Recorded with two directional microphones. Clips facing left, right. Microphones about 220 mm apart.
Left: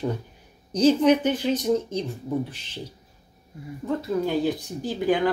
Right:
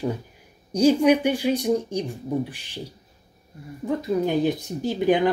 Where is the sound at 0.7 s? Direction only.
10° right (ahead or behind).